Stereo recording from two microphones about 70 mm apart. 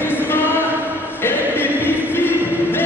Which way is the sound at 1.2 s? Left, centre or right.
Left.